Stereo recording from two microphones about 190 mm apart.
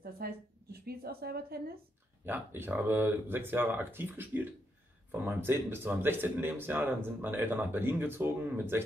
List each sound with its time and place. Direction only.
0.0 s a woman's voice: 55° right (ahead or behind)
2.2 s speech: 10° right (ahead or behind)